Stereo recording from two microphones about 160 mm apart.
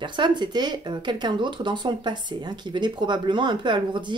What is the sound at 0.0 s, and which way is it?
Speech, 30° right (ahead or behind).